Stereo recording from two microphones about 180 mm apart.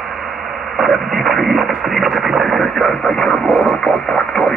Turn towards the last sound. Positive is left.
turn(degrees=5)  # may be behind; listen again after turning